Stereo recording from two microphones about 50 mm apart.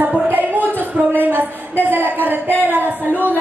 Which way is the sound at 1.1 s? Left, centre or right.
Right.